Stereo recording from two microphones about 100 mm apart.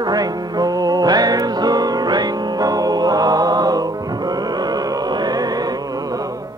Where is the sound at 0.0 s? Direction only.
40° right (ahead or behind).